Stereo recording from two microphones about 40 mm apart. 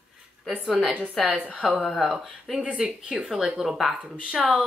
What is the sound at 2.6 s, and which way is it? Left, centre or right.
Speech, right.